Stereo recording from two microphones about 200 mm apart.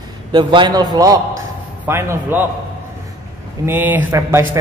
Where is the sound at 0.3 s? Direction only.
25° right (ahead or behind).